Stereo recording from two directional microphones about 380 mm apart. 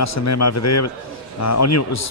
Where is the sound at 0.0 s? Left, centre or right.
Left.